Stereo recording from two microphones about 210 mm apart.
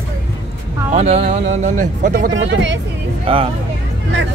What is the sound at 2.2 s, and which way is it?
Speech, 55° right (ahead or behind).